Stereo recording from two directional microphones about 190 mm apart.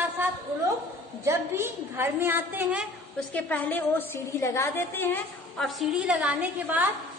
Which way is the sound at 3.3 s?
10° left (ahead or behind).